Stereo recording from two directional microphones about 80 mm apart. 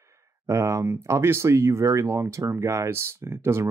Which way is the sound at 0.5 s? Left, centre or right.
Right.